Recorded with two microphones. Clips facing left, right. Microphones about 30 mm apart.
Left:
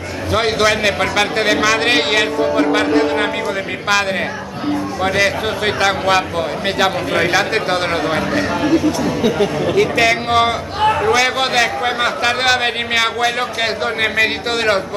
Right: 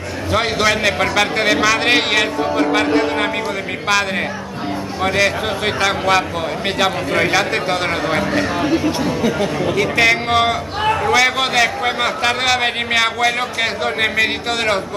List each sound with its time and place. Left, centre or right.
0.3 s speech: centre
5.0 s speech: centre
8.7 s speech: centre
9.2 s speech: centre